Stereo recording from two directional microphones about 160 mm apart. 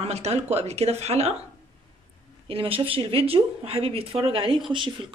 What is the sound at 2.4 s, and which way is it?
Speech, 35° right (ahead or behind).